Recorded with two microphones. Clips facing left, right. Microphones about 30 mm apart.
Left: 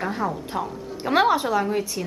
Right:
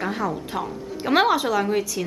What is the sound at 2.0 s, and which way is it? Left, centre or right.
Speech, centre.